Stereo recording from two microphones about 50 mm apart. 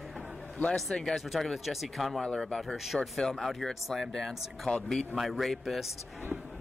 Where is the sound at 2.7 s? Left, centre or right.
Centre.